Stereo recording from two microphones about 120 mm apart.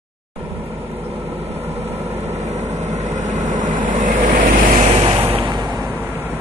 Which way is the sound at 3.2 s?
90° right.